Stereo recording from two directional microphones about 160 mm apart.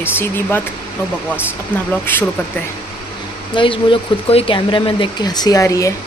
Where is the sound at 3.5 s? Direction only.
30° left (ahead or behind).